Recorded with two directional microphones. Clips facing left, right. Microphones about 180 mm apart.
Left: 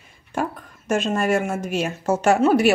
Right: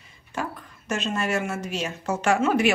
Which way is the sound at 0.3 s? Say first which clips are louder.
Left 6 dB; 50° left (ahead or behind).